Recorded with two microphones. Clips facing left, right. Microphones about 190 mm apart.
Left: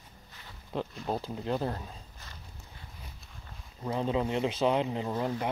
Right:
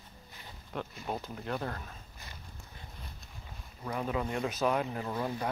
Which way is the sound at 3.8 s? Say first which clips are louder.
Left 4 dB; 25° left (ahead or behind).